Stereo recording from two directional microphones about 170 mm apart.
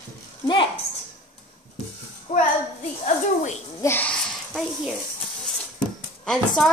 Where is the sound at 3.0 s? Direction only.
45° left (ahead or behind).